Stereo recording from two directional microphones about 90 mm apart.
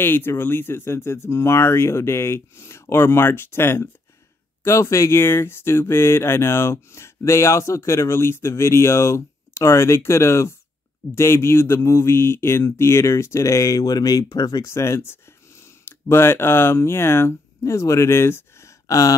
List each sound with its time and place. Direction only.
0.0 s speech: 25° left (ahead or behind)